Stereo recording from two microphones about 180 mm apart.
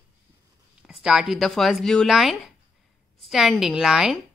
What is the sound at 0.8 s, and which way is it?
A woman's voice, 5° right (ahead or behind).